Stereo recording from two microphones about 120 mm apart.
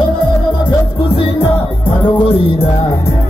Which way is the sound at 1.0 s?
45° left (ahead or behind).